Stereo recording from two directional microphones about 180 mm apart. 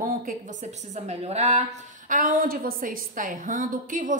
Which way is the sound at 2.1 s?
50° right (ahead or behind).